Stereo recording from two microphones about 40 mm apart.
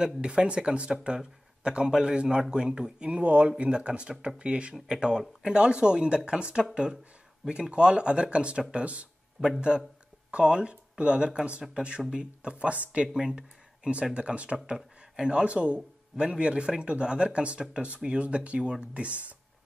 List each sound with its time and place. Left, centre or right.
0.2 s speech: right
4.8 s speech: centre; by 13.1 s right
13.1 s speech: centre
14.1 s speech: right